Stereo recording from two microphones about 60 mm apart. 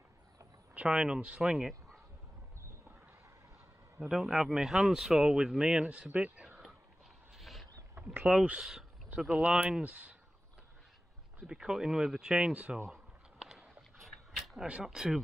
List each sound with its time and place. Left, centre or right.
0.8 s speech: centre
4.1 s speech: centre
5.9 s speech: right
7.3 s a sound: centre
8.3 s speech: centre
11.3 s speech: centre
12.9 s a sound: centre
14.7 s speech: centre